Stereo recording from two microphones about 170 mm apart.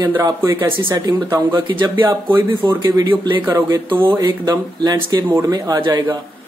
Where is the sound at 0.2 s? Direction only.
20° right (ahead or behind).